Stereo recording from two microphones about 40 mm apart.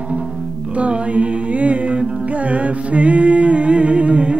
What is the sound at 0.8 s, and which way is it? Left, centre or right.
Music, right.